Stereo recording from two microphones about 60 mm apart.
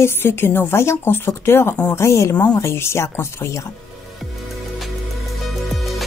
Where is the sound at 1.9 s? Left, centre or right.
Left.